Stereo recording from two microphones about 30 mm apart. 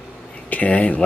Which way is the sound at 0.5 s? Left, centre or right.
Left.